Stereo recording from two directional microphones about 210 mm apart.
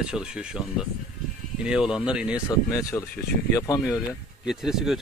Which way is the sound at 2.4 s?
15° left (ahead or behind).